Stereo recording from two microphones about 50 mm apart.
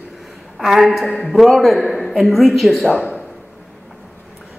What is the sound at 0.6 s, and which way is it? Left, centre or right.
Speech, centre.